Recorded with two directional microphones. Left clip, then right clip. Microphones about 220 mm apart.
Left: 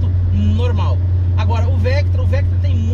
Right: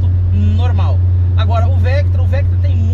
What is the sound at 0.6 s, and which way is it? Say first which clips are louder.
Speech: even; 15° left (ahead or behind).